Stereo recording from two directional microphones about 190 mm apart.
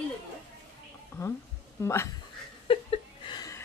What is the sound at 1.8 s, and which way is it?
Speech, 15° left (ahead or behind).